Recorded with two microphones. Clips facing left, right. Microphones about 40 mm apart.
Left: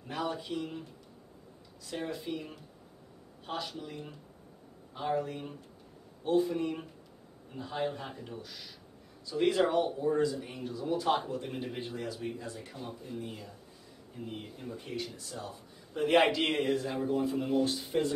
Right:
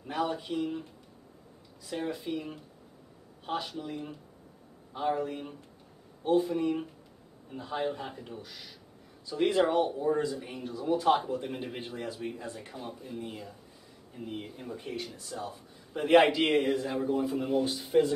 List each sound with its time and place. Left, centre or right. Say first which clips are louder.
0.3 s speech: right 4 dB; centre
1.9 s a man's voice: right 3 dB; centre
3.4 s speech: right 4 dB; centre
10.0 s a man's voice: even; right
10.3 s a man's voice: right 1 dB; centre